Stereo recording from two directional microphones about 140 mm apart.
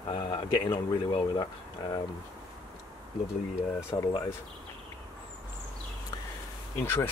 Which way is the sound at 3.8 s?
20° left (ahead or behind).